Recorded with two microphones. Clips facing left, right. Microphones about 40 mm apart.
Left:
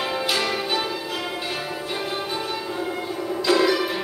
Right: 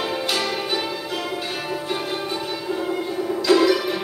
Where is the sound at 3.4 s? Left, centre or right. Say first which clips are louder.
Right 3 dB; centre.